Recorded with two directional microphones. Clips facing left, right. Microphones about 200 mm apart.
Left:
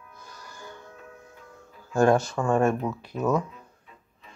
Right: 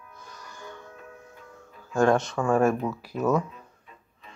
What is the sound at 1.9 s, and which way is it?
Speech, 5° left (ahead or behind).